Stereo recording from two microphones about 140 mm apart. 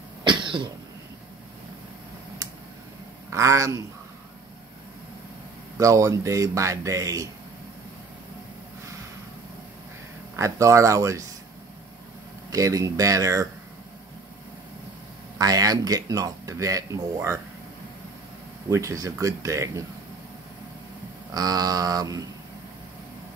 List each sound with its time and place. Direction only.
0.2 s cough: 35° right (ahead or behind)
3.3 s a man's voice: 20° right (ahead or behind)
5.8 s speech: 20° right (ahead or behind)
10.3 s speech: 20° right (ahead or behind)
12.4 s speech: 25° right (ahead or behind)
15.3 s speech: 25° right (ahead or behind)
18.7 s speech: 20° right (ahead or behind)
21.3 s speech: 25° right (ahead or behind)